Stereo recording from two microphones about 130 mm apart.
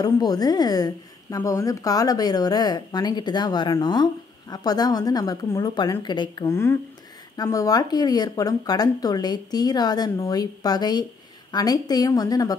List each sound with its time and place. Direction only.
0.0 s a woman's voice: 30° left (ahead or behind)
6.4 s a woman's voice: 20° left (ahead or behind)